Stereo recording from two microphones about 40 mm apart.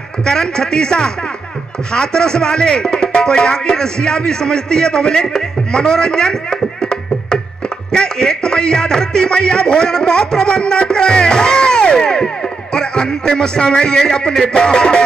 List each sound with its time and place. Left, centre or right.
0.2 s music: centre
1.9 s speech: centre
7.9 s music: centre